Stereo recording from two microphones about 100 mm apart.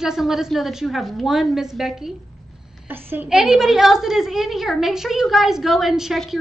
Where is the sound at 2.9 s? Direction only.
20° right (ahead or behind).